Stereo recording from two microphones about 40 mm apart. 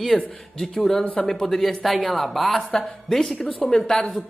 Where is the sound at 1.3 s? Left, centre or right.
Centre.